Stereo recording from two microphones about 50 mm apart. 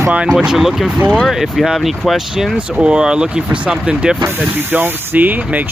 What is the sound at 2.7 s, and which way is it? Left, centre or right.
Speech, centre.